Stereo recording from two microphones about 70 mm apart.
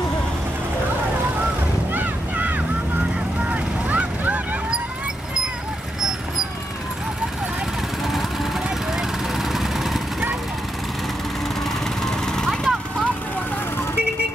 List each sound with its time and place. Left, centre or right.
2.0 s a sound: right
3.4 s vehicle: right
8.6 s vehicle: centre
12.0 s vehicle: centre